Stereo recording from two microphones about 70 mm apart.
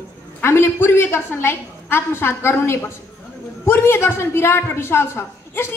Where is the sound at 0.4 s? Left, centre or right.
Left.